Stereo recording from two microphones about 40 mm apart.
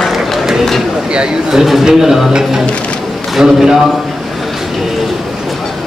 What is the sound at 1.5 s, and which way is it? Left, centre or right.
A man's voice, centre.